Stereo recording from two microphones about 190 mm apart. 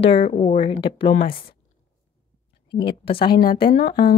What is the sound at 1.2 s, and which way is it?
Speech, 50° left (ahead or behind).